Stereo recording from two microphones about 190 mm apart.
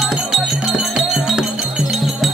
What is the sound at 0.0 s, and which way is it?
Music, centre (ahead or behind).